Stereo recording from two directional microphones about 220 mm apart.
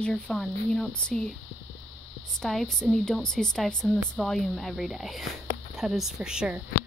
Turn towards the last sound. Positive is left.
turn(degrees=-5)  # may be behind; listen again after turning